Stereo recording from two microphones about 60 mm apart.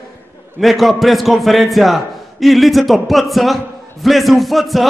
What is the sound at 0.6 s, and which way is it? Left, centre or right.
A man's voice, centre.